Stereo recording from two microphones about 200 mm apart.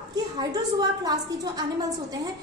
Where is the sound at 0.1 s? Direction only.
20° right (ahead or behind).